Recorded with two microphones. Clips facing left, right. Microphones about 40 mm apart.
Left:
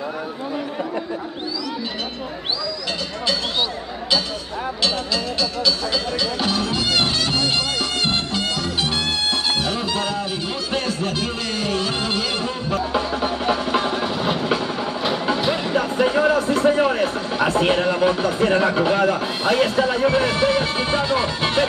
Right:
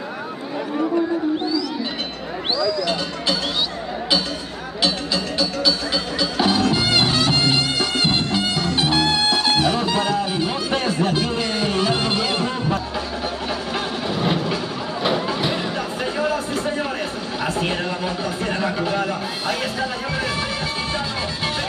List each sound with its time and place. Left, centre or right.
4.8 s music: centre
13.7 s vehicle: centre
15.7 s music: left
16.5 s a sound: left
20.4 s music: left